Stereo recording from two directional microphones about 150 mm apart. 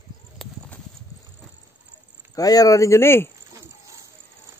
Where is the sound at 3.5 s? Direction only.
20° right (ahead or behind).